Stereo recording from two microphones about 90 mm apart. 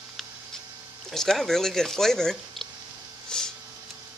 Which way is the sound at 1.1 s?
5° left (ahead or behind).